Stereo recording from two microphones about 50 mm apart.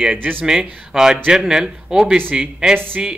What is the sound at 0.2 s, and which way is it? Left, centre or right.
Speech, right.